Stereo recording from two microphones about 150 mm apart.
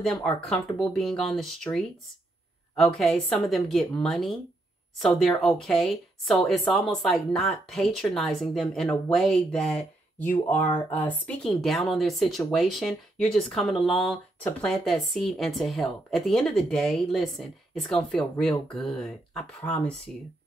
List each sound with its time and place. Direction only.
0.0 s speech: 5° left (ahead or behind)